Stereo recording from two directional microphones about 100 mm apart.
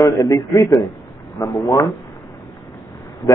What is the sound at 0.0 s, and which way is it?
Speech, 35° left (ahead or behind).